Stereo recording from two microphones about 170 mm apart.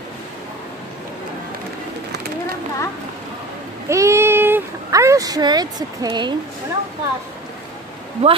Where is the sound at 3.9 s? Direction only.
15° right (ahead or behind).